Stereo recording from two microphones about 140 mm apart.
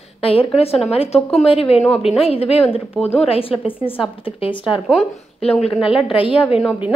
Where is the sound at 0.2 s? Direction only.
40° left (ahead or behind).